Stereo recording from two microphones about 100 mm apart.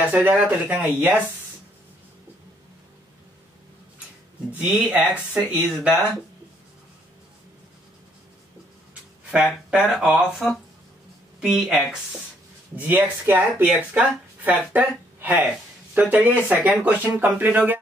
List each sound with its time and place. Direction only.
0.0 s speech: 15° right (ahead or behind)
4.5 s speech: 15° right (ahead or behind)
9.3 s speech: 5° right (ahead or behind)
12.7 s speech: 15° right (ahead or behind)